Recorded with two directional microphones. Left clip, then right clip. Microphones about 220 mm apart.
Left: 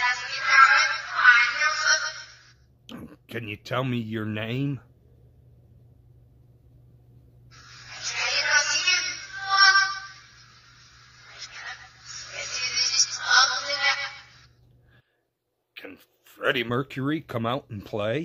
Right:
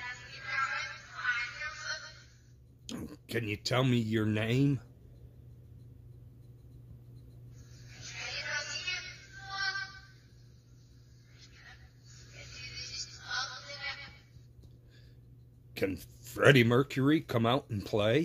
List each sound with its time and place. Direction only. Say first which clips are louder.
0.0 s music: left 17 dB; 50° left (ahead or behind)
2.9 s speech: left 1 dB; centre (ahead or behind)
7.6 s music: left 15 dB; 50° left (ahead or behind)
15.7 s speech: right 8 dB; centre (ahead or behind)